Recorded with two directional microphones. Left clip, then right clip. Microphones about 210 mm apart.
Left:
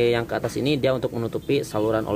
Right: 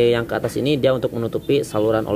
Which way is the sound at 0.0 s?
5° right (ahead or behind).